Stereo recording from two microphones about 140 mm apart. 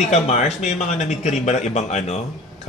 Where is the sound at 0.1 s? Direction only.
50° left (ahead or behind).